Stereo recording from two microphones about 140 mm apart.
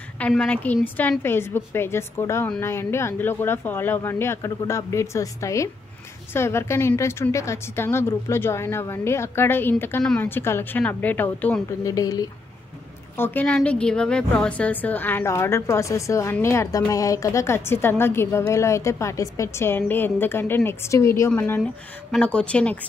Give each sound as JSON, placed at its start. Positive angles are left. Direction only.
{"t": 0.3, "sound": "a woman's voice", "side_deg": 5}
{"t": 11.8, "sound": "a woman's voice", "side_deg": 25}
{"t": 13.1, "sound": "a woman's voice", "side_deg": 15}
{"t": 21.3, "sound": "a woman's voice", "side_deg": 10}